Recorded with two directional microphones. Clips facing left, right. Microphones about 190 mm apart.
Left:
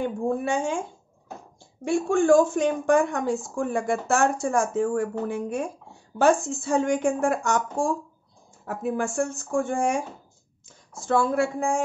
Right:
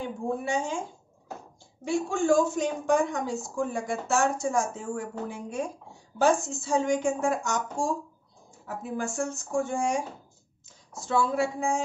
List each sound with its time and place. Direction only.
0.0 s a woman's voice: 55° left (ahead or behind)
1.9 s speech: 55° left (ahead or behind)
11.0 s a woman's voice: 50° left (ahead or behind)